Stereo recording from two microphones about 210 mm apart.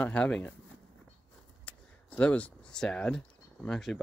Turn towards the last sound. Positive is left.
turn(degrees=0)  # may be behind; listen again after turning